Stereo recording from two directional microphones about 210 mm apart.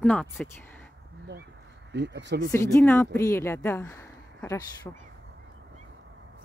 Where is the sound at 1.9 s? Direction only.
55° right (ahead or behind).